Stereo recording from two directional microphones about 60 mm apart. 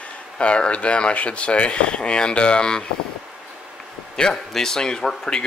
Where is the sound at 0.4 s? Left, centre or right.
Centre.